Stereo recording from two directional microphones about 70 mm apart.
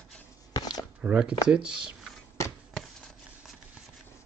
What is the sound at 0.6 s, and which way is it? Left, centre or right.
Chopping, left.